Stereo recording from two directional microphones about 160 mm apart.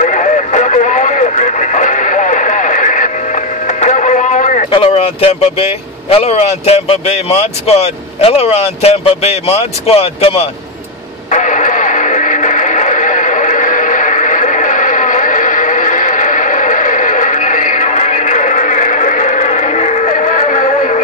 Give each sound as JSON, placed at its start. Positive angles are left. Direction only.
{"t": 0.0, "sound": "radio", "side_deg": 50}
{"t": 3.6, "sound": "music", "side_deg": 50}
{"t": 4.6, "sound": "speech", "side_deg": 35}
{"t": 11.2, "sound": "radio", "side_deg": 50}